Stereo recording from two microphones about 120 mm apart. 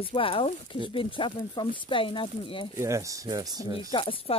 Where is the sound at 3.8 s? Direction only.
50° left (ahead or behind).